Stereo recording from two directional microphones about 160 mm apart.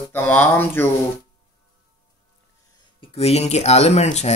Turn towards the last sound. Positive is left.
turn(degrees=45)  # may be behind; listen again after turning